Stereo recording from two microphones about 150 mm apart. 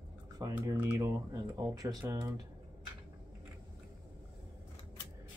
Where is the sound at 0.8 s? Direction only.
15° right (ahead or behind).